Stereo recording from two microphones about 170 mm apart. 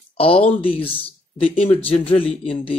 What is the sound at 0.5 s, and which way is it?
A man's voice, 35° left (ahead or behind).